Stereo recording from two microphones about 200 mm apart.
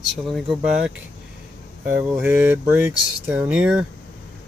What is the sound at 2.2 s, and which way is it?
Speech, 10° right (ahead or behind).